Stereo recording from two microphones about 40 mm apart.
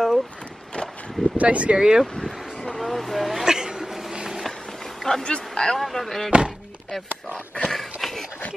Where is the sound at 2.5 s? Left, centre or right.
Centre.